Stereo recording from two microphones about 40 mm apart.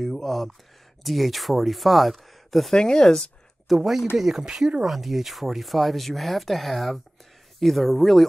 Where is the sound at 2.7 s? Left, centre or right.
Centre.